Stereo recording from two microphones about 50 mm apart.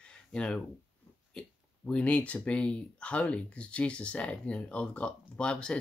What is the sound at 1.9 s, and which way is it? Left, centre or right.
Speech, left.